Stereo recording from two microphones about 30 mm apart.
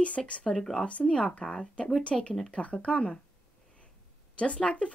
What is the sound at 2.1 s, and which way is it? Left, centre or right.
Speech, centre.